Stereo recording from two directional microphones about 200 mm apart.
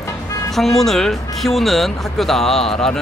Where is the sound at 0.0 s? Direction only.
15° left (ahead or behind).